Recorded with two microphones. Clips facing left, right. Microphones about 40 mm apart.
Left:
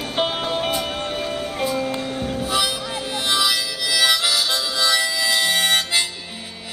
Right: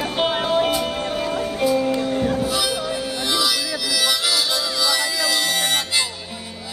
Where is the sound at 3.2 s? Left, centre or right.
Left.